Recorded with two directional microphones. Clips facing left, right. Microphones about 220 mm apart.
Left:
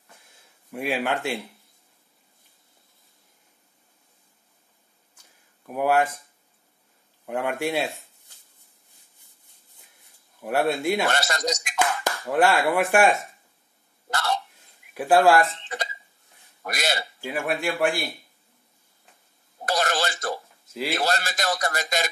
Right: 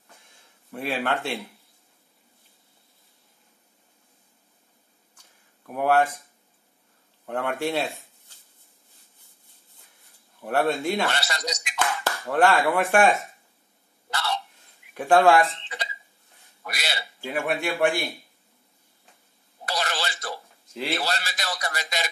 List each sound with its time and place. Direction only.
0.7 s speech: 15° left (ahead or behind)
5.7 s speech: 10° left (ahead or behind)
7.2 s speech: 10° left (ahead or behind)
10.4 s speech: 10° left (ahead or behind)
11.1 s speech: 45° left (ahead or behind)
12.0 s speech: 15° left (ahead or behind)
14.1 s hiccup: 45° left (ahead or behind)
15.0 s a man's voice: 5° left (ahead or behind)
15.5 s speech: 45° left (ahead or behind)
17.3 s a man's voice: centre (ahead or behind)
19.6 s a sound: 45° left (ahead or behind)
21.0 s speech: 45° left (ahead or behind)